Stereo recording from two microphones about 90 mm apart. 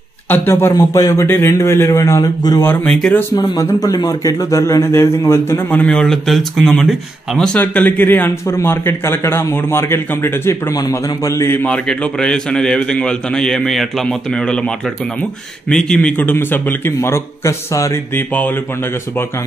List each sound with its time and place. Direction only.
0.3 s a man's voice: 25° left (ahead or behind)
0.7 s a man's voice: 35° left (ahead or behind)
1.2 s a man's voice: 25° left (ahead or behind); by 2.6 s 40° left (ahead or behind)
2.8 s a man's voice: 15° left (ahead or behind)
3.4 s a man's voice: 45° left (ahead or behind); by 7.6 s 10° left (ahead or behind)
7.6 s a man's voice: 20° left (ahead or behind)
10.7 s a man's voice: 40° left (ahead or behind)
11.5 s a man's voice: 15° left (ahead or behind)
15.7 s a man's voice: 10° left (ahead or behind); by 17.9 s 35° left (ahead or behind)
18.1 s a man's voice: 20° left (ahead or behind)